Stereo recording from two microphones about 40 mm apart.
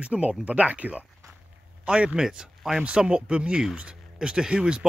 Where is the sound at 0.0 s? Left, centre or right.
Right.